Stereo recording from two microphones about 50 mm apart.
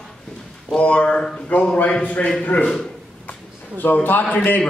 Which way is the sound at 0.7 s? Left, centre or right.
Left.